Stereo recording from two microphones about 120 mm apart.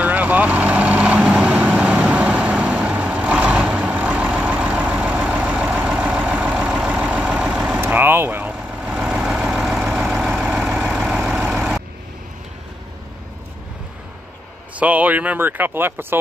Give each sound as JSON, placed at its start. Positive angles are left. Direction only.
{"t": 0.0, "sound": "vehicle", "side_deg": -15}
{"t": 7.8, "sound": "vehicle", "side_deg": -15}
{"t": 14.8, "sound": "speech", "side_deg": -10}